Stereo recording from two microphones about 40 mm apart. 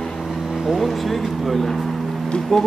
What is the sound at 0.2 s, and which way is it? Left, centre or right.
Vehicle, centre.